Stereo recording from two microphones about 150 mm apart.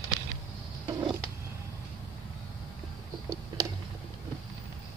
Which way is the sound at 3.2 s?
25° right (ahead or behind).